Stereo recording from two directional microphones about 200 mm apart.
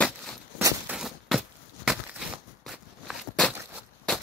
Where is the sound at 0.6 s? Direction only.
15° right (ahead or behind).